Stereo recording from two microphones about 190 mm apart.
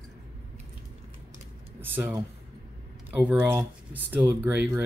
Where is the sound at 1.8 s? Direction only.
10° right (ahead or behind).